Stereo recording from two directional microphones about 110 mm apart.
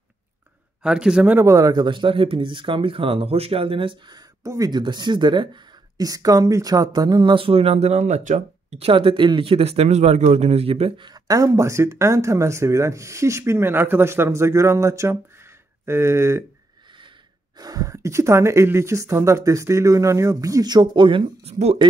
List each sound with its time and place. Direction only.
0.8 s a man's voice: 5° right (ahead or behind)
1.4 s speech: 30° right (ahead or behind)
1.7 s speech: 45° right (ahead or behind)
4.4 s speech: 30° right (ahead or behind); by 8.2 s 85° right
8.6 s speech: 65° right (ahead or behind)
11.1 s speech: 35° right (ahead or behind)
17.6 s speech: 35° right (ahead or behind)
21.5 s speech: 75° right (ahead or behind)